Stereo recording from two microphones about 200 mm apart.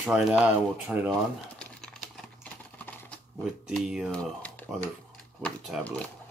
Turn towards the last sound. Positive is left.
turn(degrees=5)  # may be behind; listen again after turning